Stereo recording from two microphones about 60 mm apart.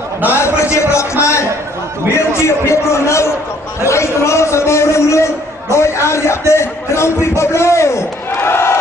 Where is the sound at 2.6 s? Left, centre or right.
Left.